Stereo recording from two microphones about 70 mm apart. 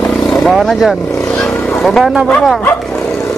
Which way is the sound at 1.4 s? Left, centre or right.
Centre.